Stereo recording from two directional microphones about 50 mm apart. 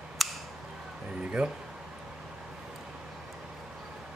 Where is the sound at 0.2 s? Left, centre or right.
Centre.